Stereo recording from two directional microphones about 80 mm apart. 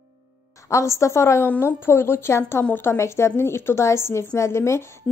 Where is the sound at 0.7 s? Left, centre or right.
Left.